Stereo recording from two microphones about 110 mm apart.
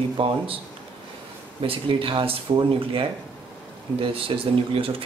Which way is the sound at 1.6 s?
55° right (ahead or behind).